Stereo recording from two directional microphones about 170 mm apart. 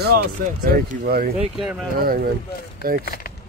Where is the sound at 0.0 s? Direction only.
65° right (ahead or behind).